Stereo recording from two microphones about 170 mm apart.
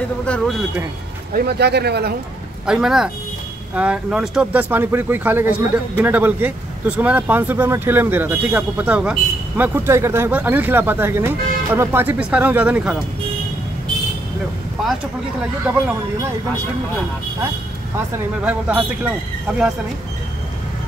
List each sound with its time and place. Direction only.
0.2 s speech: 5° left (ahead or behind)
1.3 s speech: 70° right (ahead or behind)
2.6 s speech: 5° right (ahead or behind)
17.9 s speech: 10° right (ahead or behind)